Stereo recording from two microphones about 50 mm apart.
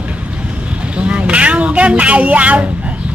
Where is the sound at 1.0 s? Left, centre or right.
Right.